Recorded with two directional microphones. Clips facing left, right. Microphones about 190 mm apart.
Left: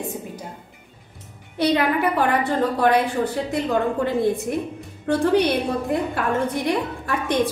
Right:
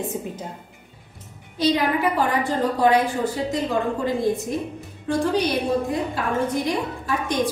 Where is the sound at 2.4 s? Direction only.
60° left (ahead or behind).